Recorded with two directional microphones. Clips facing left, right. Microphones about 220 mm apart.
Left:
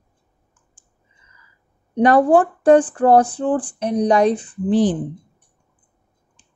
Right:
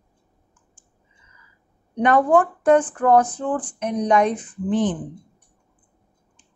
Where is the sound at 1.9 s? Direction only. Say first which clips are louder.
Left 4 dB; 35° left (ahead or behind).